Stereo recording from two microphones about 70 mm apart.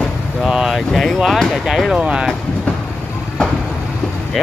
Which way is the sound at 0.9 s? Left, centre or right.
Centre.